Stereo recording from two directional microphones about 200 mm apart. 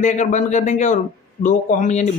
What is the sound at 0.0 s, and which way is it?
A man's voice, 40° left (ahead or behind).